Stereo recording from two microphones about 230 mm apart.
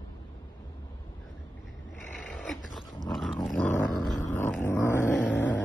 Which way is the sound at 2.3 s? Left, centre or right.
Centre.